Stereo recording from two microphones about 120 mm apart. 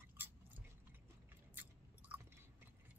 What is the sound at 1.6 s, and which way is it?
Chewing, 15° right (ahead or behind).